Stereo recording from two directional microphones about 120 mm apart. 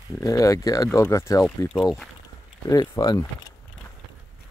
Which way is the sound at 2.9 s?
30° left (ahead or behind).